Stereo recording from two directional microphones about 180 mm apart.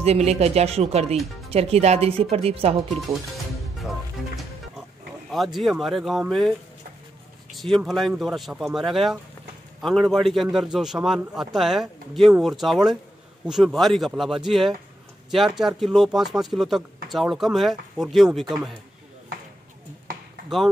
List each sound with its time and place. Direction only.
0.0 s speech: 35° right (ahead or behind)
2.9 s speech: centre (ahead or behind)
5.3 s speech: centre (ahead or behind)
7.5 s speech: centre (ahead or behind)
20.4 s speech: centre (ahead or behind)